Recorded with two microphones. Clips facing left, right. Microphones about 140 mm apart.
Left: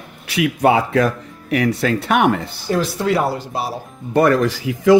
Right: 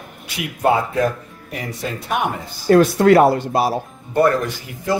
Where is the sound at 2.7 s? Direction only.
55° right (ahead or behind).